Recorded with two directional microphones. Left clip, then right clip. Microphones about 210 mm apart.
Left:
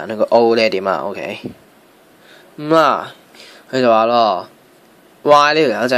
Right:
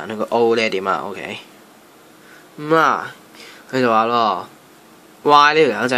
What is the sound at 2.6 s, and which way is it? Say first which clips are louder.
Speech: left 2 dB; 20° left (ahead or behind).